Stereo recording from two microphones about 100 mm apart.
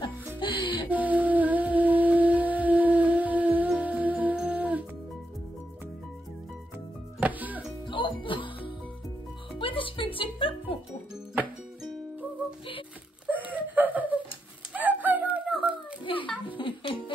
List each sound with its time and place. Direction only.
0.4 s music: 60° left (ahead or behind)
0.8 s music: 15° right (ahead or behind)
7.2 s music: 15° right (ahead or behind)
7.9 s music: 55° left (ahead or behind)
13.3 s a sound: 15° right (ahead or behind)
14.7 s fowl: 15° right (ahead or behind)
16.0 s music: 55° left (ahead or behind)